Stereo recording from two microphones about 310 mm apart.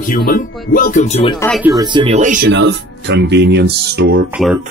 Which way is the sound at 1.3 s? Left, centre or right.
Centre.